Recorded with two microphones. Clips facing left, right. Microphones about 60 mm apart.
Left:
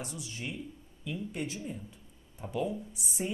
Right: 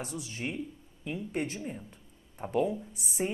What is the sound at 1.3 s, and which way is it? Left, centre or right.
Speech, right.